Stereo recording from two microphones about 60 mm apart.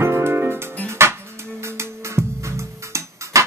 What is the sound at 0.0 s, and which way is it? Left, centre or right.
Music, right.